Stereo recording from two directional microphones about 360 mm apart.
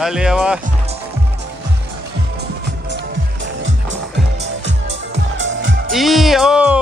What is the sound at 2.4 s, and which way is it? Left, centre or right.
Music, right.